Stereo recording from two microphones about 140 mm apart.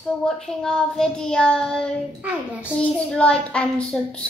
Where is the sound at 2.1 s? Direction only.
10° right (ahead or behind).